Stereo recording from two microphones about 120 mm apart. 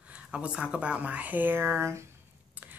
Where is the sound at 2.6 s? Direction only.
15° right (ahead or behind).